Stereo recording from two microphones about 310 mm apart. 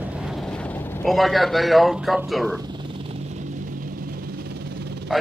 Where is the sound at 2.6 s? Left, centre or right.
Centre; by 5.0 s right.